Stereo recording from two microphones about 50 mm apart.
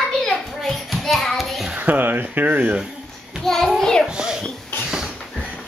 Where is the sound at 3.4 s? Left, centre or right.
Centre.